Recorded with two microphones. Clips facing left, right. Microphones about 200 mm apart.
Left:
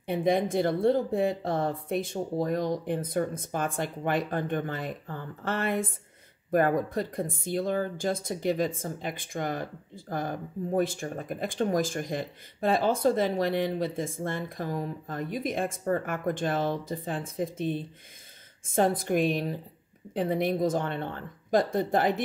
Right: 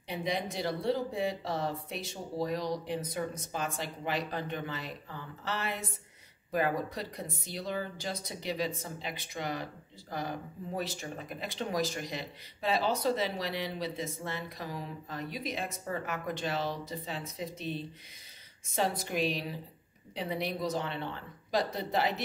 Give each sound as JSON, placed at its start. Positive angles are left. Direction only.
{"t": 0.0, "sound": "speech", "side_deg": 50}